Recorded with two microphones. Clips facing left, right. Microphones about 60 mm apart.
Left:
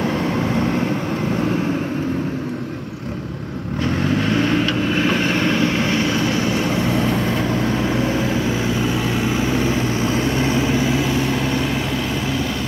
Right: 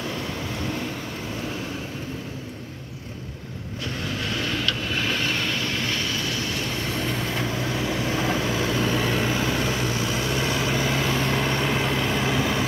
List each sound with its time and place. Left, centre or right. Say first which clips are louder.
4.2 s vehicle: left 8 dB; left
8.5 s vehicle: left 4 dB; centre
10.7 s vehicle: left 5 dB; centre